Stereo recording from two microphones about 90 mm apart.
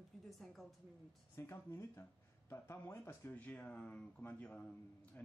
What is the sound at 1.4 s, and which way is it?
Speech, 30° left (ahead or behind).